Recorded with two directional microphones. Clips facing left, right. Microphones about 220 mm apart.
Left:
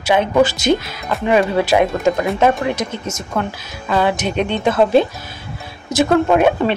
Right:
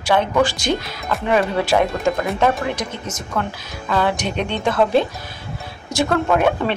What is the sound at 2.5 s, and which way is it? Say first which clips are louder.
A woman's voice: left 3 dB; 25° left (ahead or behind).